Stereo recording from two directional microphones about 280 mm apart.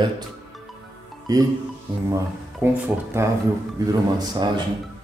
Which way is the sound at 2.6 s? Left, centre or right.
Centre.